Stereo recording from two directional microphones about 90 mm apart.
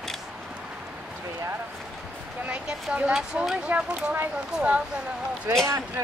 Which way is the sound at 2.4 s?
15° right (ahead or behind).